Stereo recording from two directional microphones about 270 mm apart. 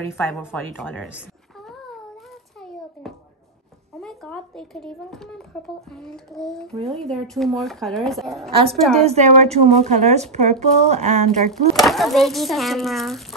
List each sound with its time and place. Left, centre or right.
0.1 s a woman's voice: centre
2.6 s a sound: centre
4.0 s a woman's voice: centre
8.5 s speech: centre
11.7 s a woman's voice: centre